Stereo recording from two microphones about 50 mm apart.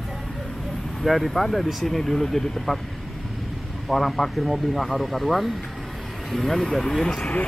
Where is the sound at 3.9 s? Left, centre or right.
Centre.